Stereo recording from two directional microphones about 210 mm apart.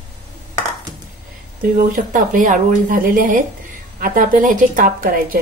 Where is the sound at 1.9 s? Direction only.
40° right (ahead or behind).